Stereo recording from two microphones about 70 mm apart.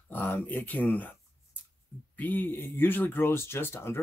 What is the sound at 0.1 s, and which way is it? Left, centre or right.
Dog, left.